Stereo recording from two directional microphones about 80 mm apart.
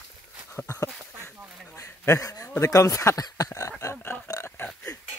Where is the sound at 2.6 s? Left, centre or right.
Left.